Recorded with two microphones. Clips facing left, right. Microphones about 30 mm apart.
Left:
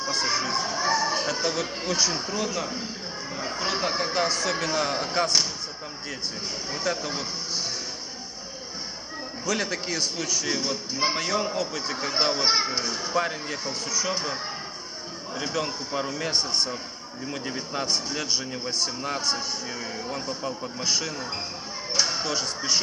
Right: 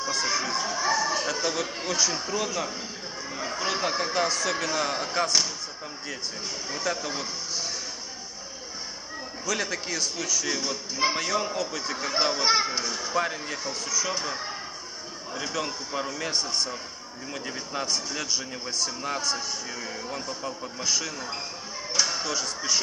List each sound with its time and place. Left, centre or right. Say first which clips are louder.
0.0 s a sound: left 1 dB; centre
2.3 s a man's voice: even; centre
6.7 s a man's voice: left 1 dB; centre
9.5 s a man's voice: left 2 dB; centre
13.2 s speech: left 1 dB; centre
13.7 s a man's voice: left 1 dB; centre
16.3 s a man's voice: left 3 dB; left
17.3 s a man's voice: left 2 dB; centre
18.1 s a man's voice: left 2 dB; centre
18.9 s a man's voice: left 1 dB; centre
21.9 s a sound: left 1 dB; centre